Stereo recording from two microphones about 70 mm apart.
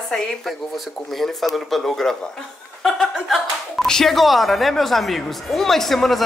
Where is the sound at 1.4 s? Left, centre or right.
Centre.